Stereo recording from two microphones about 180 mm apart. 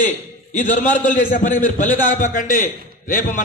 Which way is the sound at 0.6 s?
45° left (ahead or behind).